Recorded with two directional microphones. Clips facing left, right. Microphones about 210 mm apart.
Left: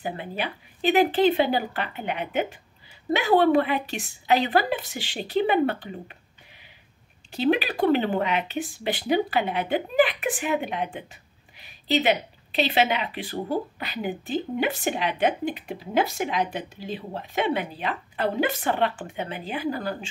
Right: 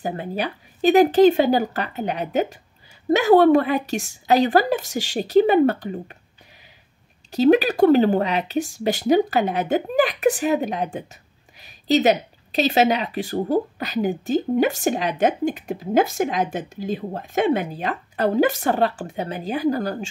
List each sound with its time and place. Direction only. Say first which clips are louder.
0.0 s speech: right 5 dB; 40° right (ahead or behind)
7.2 s speech: right 7 dB; 40° right (ahead or behind)